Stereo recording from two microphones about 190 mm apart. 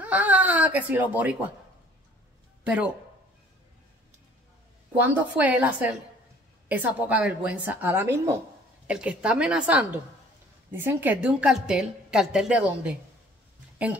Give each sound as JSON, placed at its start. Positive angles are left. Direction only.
{"t": 0.0, "sound": "speech", "side_deg": -10}
{"t": 2.6, "sound": "speech", "side_deg": -5}
{"t": 4.9, "sound": "a woman's voice", "side_deg": -10}